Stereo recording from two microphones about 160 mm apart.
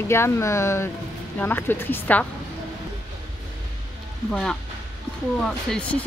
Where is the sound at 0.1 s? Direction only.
15° left (ahead or behind).